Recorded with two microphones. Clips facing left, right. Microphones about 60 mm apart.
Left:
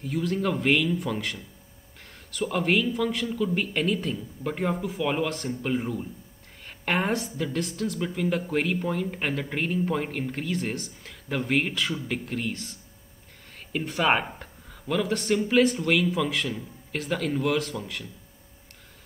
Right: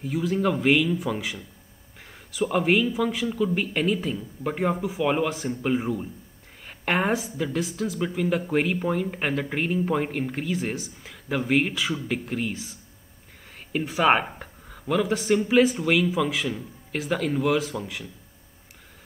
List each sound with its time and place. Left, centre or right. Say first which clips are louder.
0.0 s a man's voice: right 3 dB; centre